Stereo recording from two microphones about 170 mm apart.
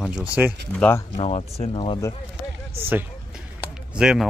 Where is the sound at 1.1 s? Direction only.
35° left (ahead or behind).